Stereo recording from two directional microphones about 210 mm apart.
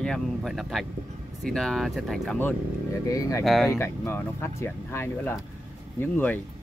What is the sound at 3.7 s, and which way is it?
Speech, 10° left (ahead or behind).